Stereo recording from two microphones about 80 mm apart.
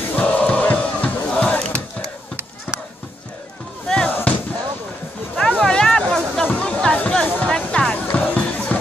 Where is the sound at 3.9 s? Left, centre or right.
Centre.